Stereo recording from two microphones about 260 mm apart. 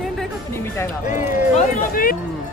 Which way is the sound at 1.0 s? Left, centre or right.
Left.